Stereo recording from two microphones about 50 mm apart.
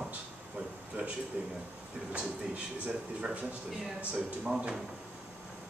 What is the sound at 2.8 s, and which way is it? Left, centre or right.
Speech, right.